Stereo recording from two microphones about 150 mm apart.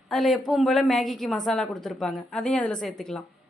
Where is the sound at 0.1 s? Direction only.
Centre (ahead or behind).